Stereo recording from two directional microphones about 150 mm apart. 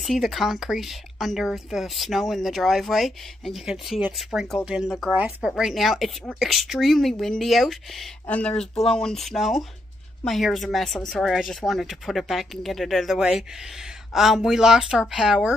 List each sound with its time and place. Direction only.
0.0 s speech: centre (ahead or behind)